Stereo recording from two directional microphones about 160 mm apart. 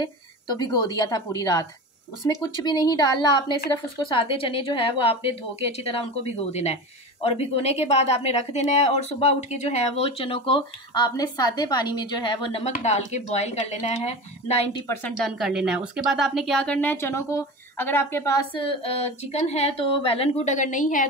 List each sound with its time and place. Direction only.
0.0 s a woman's voice: 25° left (ahead or behind); by 14.8 s 40° left (ahead or behind)
15.2 s a woman's voice: centre (ahead or behind); by 21.1 s 55° left (ahead or behind)